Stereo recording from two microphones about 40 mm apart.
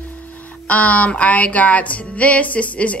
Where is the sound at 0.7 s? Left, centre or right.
Left.